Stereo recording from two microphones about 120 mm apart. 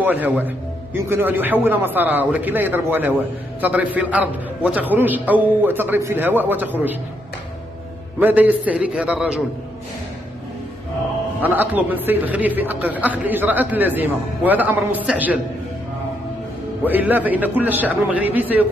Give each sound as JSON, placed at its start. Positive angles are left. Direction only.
{"t": 0.0, "sound": "a man's voice", "side_deg": -15}
{"t": 8.2, "sound": "a man's voice", "side_deg": -15}
{"t": 11.4, "sound": "a man's voice", "side_deg": -15}
{"t": 16.8, "sound": "a man's voice", "side_deg": -15}